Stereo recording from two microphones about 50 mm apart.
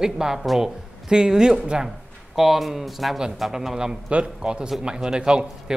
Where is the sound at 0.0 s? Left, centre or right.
Centre.